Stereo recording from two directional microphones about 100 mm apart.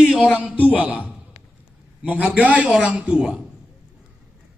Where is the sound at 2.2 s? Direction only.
15° right (ahead or behind).